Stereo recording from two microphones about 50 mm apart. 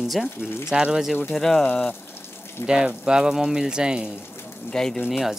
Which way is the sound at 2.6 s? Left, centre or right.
Centre.